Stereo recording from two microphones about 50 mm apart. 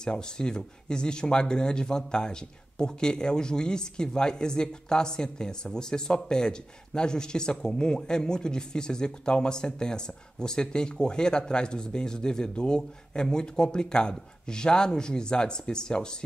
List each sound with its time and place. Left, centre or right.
0.0 s speech: centre